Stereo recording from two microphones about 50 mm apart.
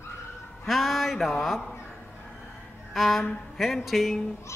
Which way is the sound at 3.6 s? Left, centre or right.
Centre.